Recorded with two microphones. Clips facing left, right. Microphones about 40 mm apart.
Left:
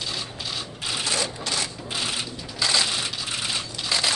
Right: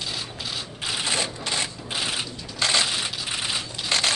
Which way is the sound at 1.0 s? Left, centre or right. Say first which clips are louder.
Even; right.